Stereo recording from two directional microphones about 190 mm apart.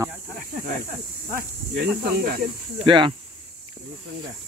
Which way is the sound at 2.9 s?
25° right (ahead or behind).